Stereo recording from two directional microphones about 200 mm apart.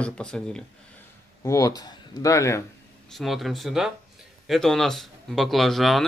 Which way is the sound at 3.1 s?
Centre (ahead or behind).